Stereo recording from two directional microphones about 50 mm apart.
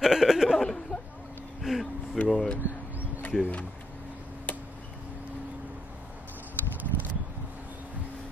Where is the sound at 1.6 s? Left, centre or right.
Centre.